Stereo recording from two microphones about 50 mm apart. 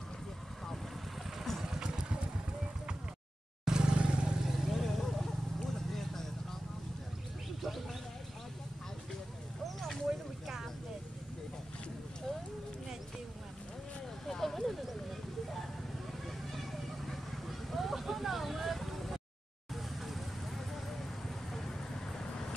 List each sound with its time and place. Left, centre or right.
1.6 s vehicle: centre
3.6 s vehicle: centre
10.0 s vehicle: centre
14.2 s a sound: centre
16.1 s vehicle: centre
22.2 s vehicle: centre